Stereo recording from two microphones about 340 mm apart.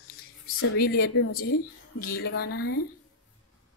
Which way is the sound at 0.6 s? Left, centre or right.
Left.